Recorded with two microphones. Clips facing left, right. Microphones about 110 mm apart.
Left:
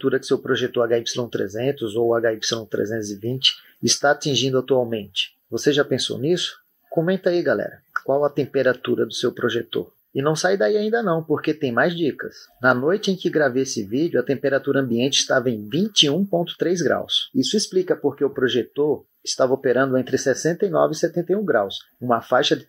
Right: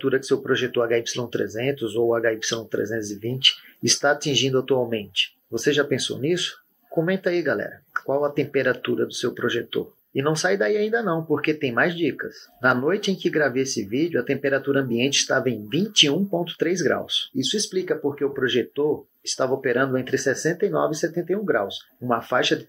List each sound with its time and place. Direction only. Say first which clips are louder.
0.0 s speech: left 1 dB; 20° left (ahead or behind)
18.0 s speech: left 3 dB; 20° left (ahead or behind)